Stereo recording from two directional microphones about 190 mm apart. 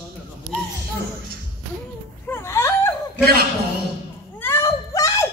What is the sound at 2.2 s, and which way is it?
Whimper, 10° left (ahead or behind).